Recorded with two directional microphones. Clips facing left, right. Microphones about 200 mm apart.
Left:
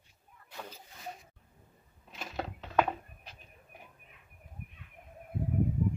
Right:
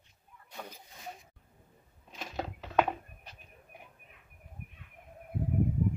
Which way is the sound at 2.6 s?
10° right (ahead or behind).